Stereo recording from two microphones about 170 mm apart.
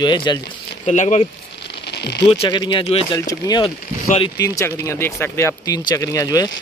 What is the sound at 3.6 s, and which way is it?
Speech, 35° left (ahead or behind).